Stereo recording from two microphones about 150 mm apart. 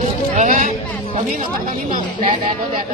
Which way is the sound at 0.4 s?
60° right (ahead or behind).